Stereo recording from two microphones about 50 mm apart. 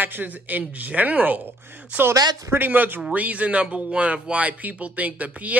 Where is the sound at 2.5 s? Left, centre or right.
Right.